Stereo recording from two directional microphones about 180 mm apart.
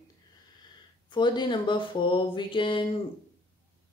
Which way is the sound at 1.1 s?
25° left (ahead or behind).